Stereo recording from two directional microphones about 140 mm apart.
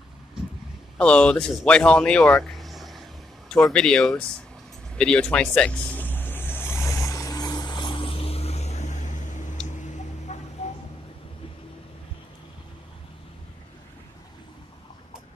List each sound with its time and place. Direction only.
0.9 s speech: 5° left (ahead or behind)
4.9 s vehicle: 5° left (ahead or behind); by 9.6 s 60° left (ahead or behind)
9.7 s a sound: 60° left (ahead or behind)